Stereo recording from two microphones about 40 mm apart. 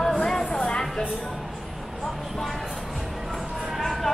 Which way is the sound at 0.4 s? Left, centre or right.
Left.